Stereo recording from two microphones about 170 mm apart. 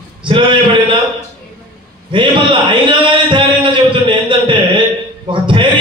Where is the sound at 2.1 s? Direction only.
30° right (ahead or behind).